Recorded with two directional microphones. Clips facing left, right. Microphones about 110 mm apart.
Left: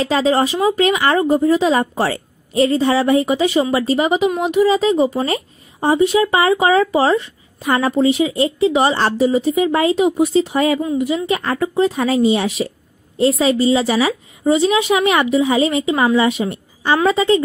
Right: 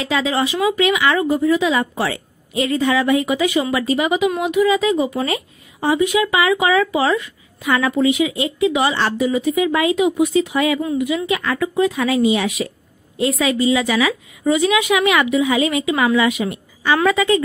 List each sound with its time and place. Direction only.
0.0 s a woman's voice: 35° left (ahead or behind)